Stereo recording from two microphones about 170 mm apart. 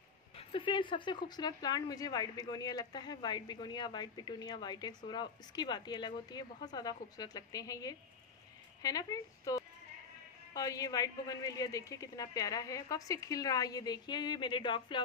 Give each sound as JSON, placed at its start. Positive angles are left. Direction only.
{"t": 0.4, "sound": "speech", "side_deg": 30}